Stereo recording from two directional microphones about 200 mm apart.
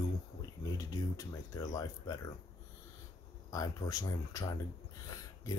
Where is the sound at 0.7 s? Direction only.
15° left (ahead or behind).